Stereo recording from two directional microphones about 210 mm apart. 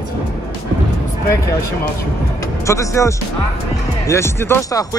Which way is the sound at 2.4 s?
15° left (ahead or behind).